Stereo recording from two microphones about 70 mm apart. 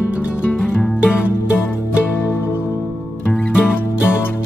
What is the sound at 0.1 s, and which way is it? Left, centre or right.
Music, centre.